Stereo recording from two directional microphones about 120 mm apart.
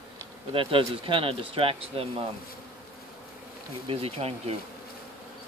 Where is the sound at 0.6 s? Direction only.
45° right (ahead or behind).